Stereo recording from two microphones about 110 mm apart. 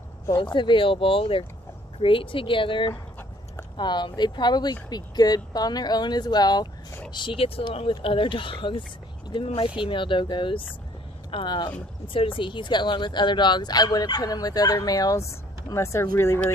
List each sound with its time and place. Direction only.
0.4 s speech: 45° left (ahead or behind)
12.1 s speech: 55° left (ahead or behind); by 16.5 s 25° left (ahead or behind)